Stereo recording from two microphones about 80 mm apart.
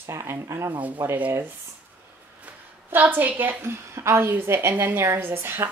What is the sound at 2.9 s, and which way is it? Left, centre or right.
A woman's voice, right.